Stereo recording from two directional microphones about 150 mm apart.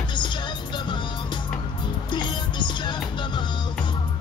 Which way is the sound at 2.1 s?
30° left (ahead or behind).